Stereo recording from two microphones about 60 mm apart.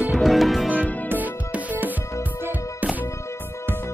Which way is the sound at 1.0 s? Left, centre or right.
Right.